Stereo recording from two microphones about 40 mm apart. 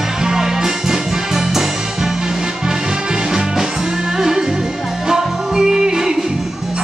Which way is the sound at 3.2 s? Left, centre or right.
Centre.